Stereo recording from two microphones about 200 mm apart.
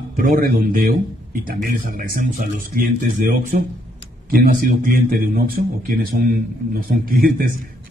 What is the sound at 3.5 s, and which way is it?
Speech, 45° right (ahead or behind).